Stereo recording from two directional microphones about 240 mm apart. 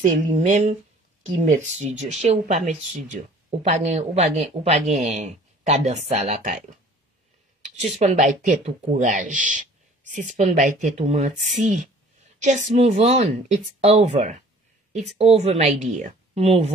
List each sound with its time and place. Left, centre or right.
0.0 s speech: right
7.6 s speech: right